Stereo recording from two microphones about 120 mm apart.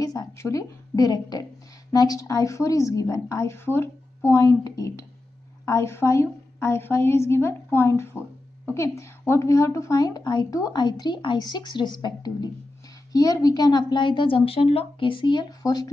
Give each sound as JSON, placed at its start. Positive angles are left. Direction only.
{"t": 0.0, "sound": "a woman's voice", "side_deg": 35}